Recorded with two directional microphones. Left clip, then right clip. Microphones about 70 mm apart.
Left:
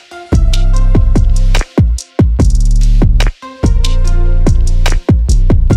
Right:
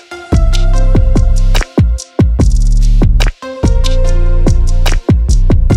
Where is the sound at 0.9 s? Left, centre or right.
Left.